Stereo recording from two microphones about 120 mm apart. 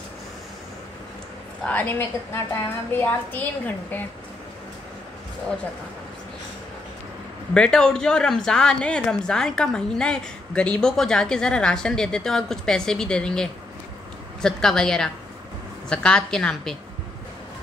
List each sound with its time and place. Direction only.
1.6 s a woman's voice: 10° left (ahead or behind)
7.5 s speech: 5° left (ahead or behind)